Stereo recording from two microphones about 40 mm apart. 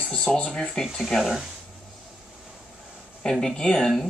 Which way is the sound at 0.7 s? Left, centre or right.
Centre.